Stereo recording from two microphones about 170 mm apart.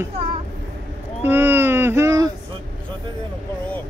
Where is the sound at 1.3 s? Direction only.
15° right (ahead or behind).